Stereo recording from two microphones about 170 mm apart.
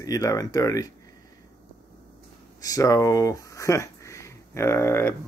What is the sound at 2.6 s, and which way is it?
Speech, 20° left (ahead or behind).